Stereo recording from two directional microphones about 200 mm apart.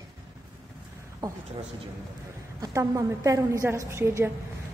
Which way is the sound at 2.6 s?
15° right (ahead or behind).